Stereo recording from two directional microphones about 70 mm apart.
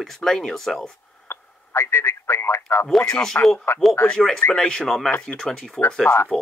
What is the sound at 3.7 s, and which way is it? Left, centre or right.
Speech, left.